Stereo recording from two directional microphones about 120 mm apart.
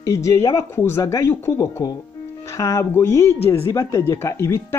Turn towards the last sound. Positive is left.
turn(degrees=20)  # may be behind; listen again after turning